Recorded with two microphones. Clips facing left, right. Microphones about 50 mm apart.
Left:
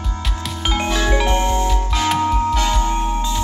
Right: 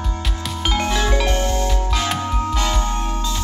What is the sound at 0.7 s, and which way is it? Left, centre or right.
Music, centre.